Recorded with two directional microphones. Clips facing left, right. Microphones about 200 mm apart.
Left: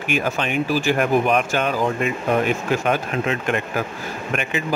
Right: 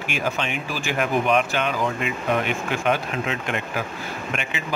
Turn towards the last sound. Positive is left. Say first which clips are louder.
# left 4 dB
turn(degrees=50)  # may be behind; listen again after turning